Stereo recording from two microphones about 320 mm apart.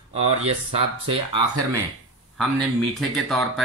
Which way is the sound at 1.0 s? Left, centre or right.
Centre.